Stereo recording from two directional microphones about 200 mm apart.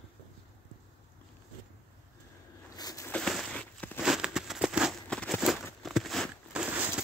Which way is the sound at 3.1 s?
Centre (ahead or behind).